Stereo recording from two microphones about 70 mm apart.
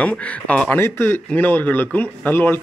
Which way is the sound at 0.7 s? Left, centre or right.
Left.